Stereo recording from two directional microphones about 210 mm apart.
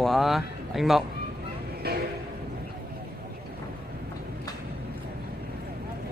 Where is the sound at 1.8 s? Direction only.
50° right (ahead or behind).